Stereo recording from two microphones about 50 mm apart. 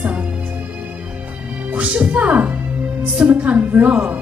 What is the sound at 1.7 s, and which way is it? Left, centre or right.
A woman's voice, right.